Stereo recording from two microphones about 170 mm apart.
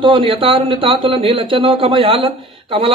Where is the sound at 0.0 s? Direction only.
30° right (ahead or behind).